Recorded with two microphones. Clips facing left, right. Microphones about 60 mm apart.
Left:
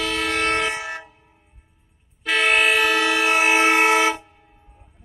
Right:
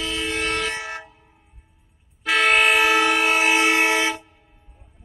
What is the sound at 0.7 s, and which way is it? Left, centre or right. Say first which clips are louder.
Vehicle horn: left 2 dB; centre.